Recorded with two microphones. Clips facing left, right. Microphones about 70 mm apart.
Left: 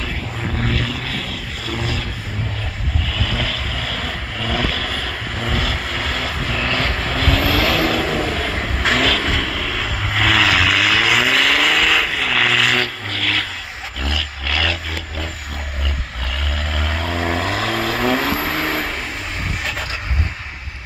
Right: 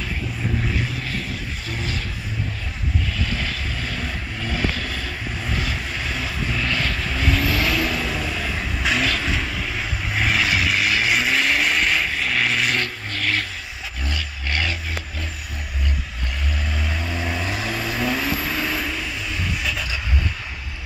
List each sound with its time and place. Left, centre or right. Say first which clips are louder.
0.6 s vehicle: left 6 dB; left
3.8 s vehicle: left 3 dB; left
6.6 s vehicle: left 4 dB; left
7.2 s vehicle: left 4 dB; left
8.0 s vehicle: left 6 dB; left
9.2 s vehicle: left 4 dB; left
16.7 s vehicle: left 6 dB; left
17.5 s vehicle: left 5 dB; left